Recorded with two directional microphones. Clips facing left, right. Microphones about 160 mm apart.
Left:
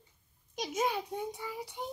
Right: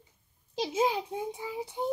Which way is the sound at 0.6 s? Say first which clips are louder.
Right 4 dB; 25° right (ahead or behind).